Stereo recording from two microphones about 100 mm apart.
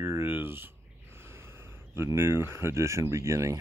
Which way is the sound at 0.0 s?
25° right (ahead or behind).